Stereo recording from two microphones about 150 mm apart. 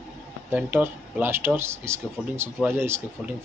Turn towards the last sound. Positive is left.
turn(degrees=-15)  # may be behind; listen again after turning